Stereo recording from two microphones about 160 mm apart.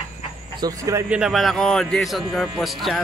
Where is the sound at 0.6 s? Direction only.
20° right (ahead or behind).